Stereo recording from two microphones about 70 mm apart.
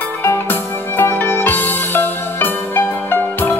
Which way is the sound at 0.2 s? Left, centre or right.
Left.